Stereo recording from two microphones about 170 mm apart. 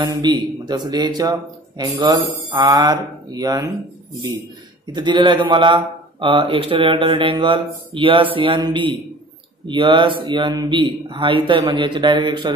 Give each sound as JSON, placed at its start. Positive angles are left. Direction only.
{"t": 0.0, "sound": "speech", "side_deg": -25}
{"t": 4.9, "sound": "speech", "side_deg": -25}